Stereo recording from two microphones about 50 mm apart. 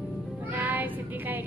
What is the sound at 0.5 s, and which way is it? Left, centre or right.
Child singing, right.